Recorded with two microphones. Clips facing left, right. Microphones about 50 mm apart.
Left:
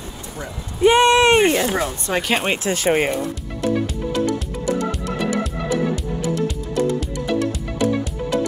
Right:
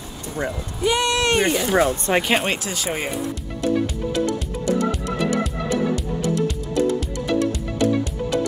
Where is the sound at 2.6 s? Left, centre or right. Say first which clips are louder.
Left 8 dB; left.